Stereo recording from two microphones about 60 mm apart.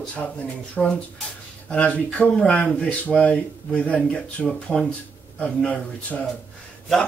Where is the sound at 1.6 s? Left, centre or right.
Left.